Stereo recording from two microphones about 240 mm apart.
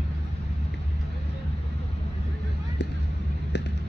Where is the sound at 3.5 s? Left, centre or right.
Left.